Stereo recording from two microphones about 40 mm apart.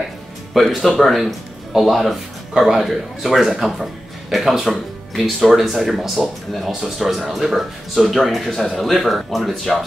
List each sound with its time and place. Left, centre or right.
0.5 s speech: centre
2.6 s speech: centre
3.2 s speech: centre
6.1 s speech: centre
6.8 s speech: centre